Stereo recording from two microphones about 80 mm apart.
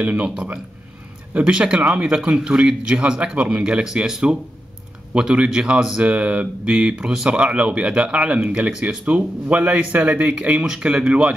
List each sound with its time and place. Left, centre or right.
0.0 s speech: centre
1.4 s speech: centre